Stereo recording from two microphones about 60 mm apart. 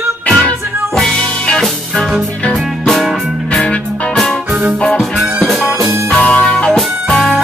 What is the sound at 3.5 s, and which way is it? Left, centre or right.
Music, centre.